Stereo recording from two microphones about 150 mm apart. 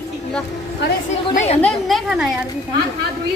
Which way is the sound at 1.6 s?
Centre (ahead or behind).